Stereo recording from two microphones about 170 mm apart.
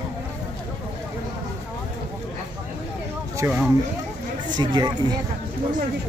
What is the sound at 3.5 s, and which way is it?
Speech, 10° right (ahead or behind).